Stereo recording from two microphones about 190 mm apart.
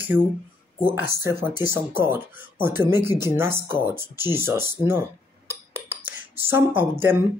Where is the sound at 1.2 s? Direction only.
10° right (ahead or behind).